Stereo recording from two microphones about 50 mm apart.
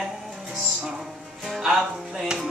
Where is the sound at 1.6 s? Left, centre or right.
Centre.